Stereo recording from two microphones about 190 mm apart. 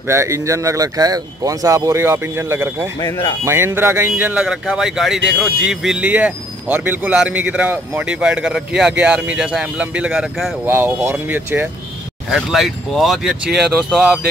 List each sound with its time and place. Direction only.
0.1 s a man's voice: 15° right (ahead or behind)
3.0 s speech: 20° left (ahead or behind)
3.4 s a man's voice: 15° right (ahead or behind)